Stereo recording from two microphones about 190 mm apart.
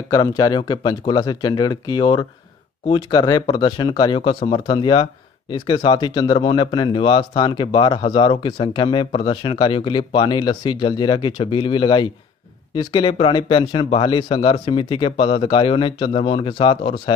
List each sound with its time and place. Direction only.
0.1 s speech: 20° left (ahead or behind)